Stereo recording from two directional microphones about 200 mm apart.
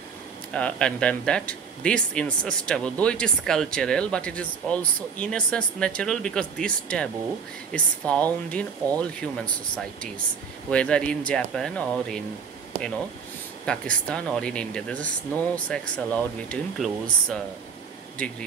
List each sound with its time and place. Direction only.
0.5 s speech: 5° left (ahead or behind)
10.7 s speech: 5° left (ahead or behind)
12.7 s speech: 35° right (ahead or behind)
13.7 s speech: 5° left (ahead or behind)